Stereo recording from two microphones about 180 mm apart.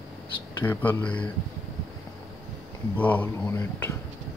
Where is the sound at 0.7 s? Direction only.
10° left (ahead or behind).